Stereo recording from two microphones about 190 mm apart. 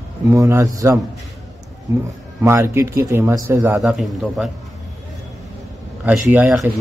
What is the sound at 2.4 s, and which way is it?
Speech, 15° right (ahead or behind).